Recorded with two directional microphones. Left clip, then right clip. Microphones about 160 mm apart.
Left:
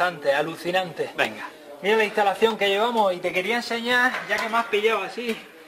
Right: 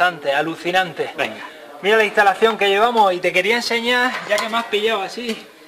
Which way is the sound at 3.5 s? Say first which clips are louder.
Right 6 dB; 55° right (ahead or behind).